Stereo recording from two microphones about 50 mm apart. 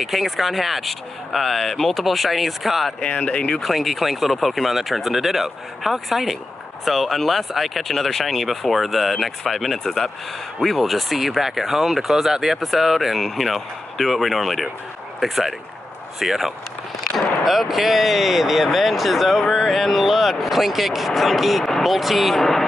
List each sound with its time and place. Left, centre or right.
0.0 s speech: centre
3.0 s speech: left
3.5 s speech: centre